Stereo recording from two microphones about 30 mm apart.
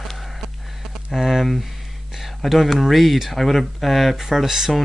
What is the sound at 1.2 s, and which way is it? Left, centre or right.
Speech, centre.